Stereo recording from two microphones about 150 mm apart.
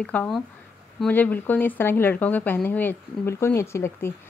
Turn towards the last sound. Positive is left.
turn(degrees=15)  # may be behind; listen again after turning